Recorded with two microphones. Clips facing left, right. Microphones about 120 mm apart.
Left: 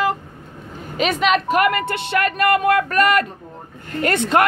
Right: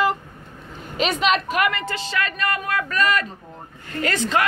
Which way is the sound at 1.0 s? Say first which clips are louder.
Left 3 dB; 45° left (ahead or behind).